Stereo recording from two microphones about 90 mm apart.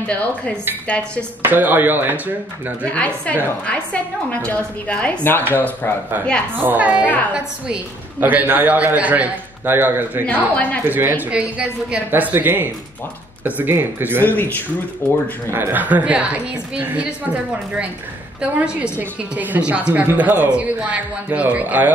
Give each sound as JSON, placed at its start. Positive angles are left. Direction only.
{"t": 1.4, "sound": "a man's voice", "side_deg": -20}
{"t": 2.8, "sound": "a woman's voice", "side_deg": 15}
{"t": 6.5, "sound": "a man's voice", "side_deg": -20}
{"t": 8.2, "sound": "a man's voice", "side_deg": -20}
{"t": 10.2, "sound": "a woman's voice", "side_deg": 15}
{"t": 10.9, "sound": "a man's voice", "side_deg": -25}
{"t": 14.2, "sound": "speech", "side_deg": 20}
{"t": 15.5, "sound": "a man's voice", "side_deg": -20}